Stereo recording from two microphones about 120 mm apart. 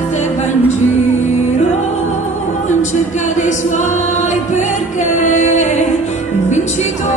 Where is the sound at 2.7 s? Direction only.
90° left; by 7.1 s 75° left (ahead or behind).